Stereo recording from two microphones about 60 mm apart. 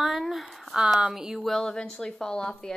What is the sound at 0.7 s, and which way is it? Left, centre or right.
A woman's voice, centre.